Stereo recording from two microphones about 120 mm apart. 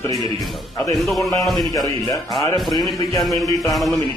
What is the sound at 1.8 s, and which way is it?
Speech, 30° left (ahead or behind).